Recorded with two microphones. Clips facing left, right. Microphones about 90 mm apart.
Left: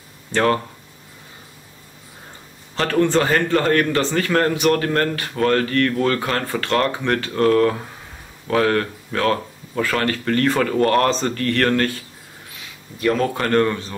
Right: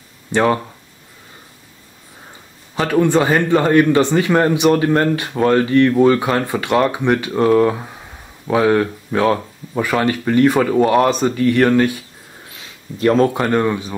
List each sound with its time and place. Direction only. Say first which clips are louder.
0.3 s speech: right 3 dB; 15° right (ahead or behind)
2.7 s a man's voice: right 3 dB; 10° right (ahead or behind)
13.0 s speech: right 6 dB; 30° right (ahead or behind)
13.3 s a man's voice: right 2 dB; 15° right (ahead or behind)